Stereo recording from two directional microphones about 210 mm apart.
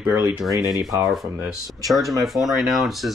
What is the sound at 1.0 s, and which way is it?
Speech, centre (ahead or behind).